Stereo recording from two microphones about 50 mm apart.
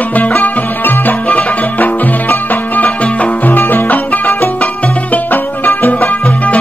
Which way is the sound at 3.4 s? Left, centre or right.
Left.